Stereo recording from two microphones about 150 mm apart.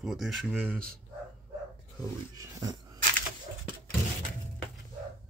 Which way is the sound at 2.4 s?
25° right (ahead or behind).